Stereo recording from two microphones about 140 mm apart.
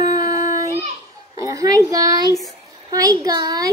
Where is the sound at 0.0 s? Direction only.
25° right (ahead or behind).